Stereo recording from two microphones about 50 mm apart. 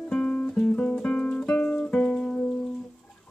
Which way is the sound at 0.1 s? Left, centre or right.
Centre.